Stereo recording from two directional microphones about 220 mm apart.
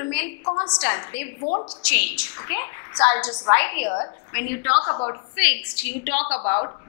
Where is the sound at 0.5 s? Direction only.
25° left (ahead or behind).